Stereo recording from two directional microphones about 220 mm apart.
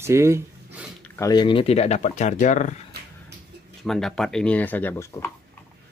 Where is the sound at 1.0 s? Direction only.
15° left (ahead or behind); by 2.7 s 35° left (ahead or behind).